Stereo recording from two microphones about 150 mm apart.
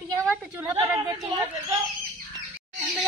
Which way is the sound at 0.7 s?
20° right (ahead or behind).